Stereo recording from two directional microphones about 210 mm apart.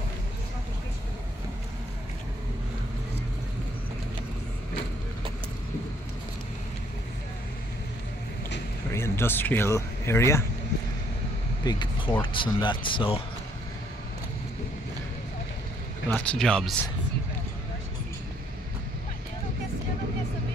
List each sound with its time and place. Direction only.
8.9 s speech: 10° left (ahead or behind)
11.6 s speech: 20° left (ahead or behind)
16.1 s speech: 5° left (ahead or behind)